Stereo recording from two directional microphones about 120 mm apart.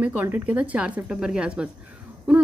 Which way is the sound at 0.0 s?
15° right (ahead or behind).